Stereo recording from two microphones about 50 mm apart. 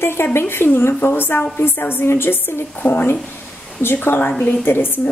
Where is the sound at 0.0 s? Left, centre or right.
Left.